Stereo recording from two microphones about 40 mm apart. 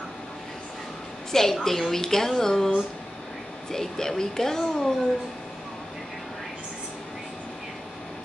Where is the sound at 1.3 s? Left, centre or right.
Centre.